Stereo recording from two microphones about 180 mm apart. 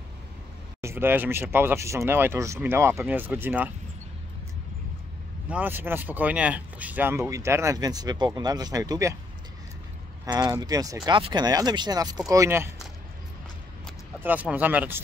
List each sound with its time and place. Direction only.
0.7 s speech: 15° right (ahead or behind)
5.5 s speech: 10° right (ahead or behind)
10.2 s speech: 20° right (ahead or behind)
14.2 s speech: 10° right (ahead or behind)